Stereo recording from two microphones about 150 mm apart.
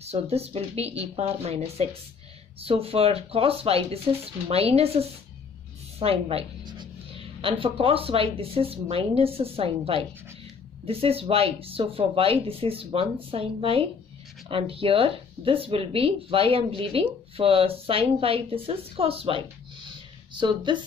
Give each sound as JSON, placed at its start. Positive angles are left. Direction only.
{"t": 0.0, "sound": "speech", "side_deg": -45}